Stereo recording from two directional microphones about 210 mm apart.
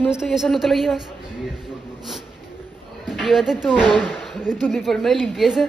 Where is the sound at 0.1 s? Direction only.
5° right (ahead or behind).